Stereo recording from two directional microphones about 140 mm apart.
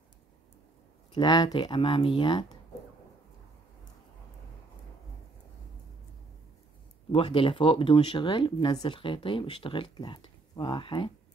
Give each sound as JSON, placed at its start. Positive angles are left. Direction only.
{"t": 1.1, "sound": "speech", "side_deg": 30}
{"t": 7.1, "sound": "speech", "side_deg": 40}